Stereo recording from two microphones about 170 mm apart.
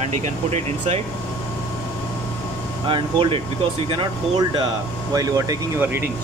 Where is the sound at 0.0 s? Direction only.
40° right (ahead or behind).